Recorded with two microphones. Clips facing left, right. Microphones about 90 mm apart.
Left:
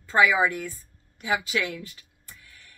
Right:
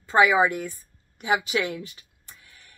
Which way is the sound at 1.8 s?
20° right (ahead or behind).